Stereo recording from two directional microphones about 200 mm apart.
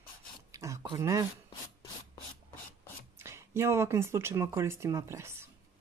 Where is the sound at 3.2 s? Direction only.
15° right (ahead or behind).